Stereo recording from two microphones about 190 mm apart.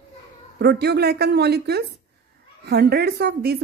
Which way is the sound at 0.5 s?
60° right (ahead or behind).